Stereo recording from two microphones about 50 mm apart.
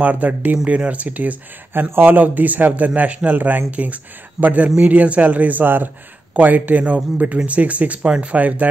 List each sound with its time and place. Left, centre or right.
0.0 s a man's voice: right
1.7 s a man's voice: right